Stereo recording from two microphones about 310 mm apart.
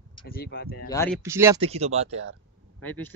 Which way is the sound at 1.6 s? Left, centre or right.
Centre.